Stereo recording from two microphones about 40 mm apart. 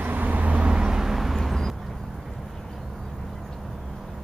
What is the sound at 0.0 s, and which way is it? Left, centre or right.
Vehicle, right.